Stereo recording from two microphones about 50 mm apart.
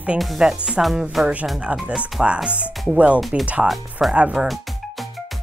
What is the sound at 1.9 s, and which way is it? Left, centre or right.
Speech, centre.